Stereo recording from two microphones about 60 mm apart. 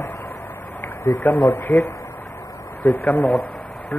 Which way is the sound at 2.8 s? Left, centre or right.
Left.